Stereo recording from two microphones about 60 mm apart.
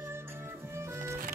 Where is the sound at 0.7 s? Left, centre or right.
Right.